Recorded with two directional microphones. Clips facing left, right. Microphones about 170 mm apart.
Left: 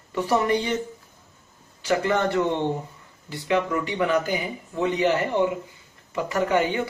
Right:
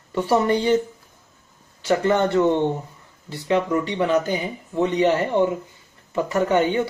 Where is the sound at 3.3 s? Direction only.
25° right (ahead or behind).